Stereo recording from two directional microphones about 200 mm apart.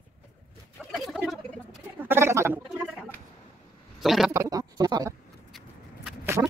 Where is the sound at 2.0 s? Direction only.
15° right (ahead or behind).